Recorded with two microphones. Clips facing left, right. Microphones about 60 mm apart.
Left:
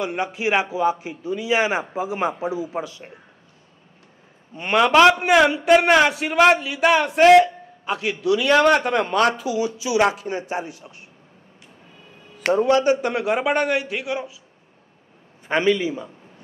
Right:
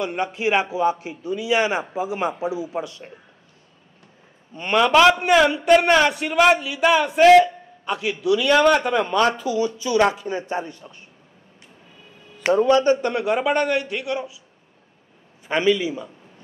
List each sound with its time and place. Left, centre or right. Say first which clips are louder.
0.0 s a man's voice: right 1 dB; centre
4.6 s speech: left 1 dB; centre
6.3 s a man's voice: left 1 dB; left
7.1 s speech: even; centre
7.9 s a man's voice: even; left
9.3 s speech: right 1 dB; centre
12.6 s a man's voice: even; centre
15.4 s a man's voice: even; left